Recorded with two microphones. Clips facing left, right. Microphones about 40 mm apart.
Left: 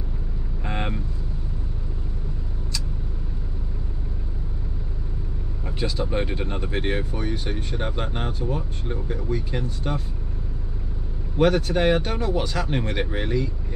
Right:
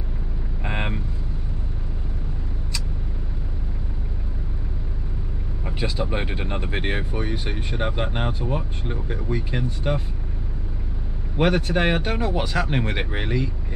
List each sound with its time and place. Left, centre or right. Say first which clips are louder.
0.7 s vehicle: right 1 dB; right
5.7 s speech: even; centre
11.3 s speech: left 1 dB; centre